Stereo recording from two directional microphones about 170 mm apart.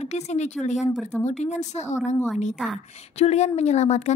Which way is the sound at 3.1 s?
40° left (ahead or behind).